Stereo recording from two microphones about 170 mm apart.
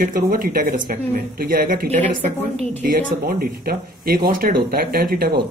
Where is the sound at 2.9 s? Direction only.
60° right (ahead or behind).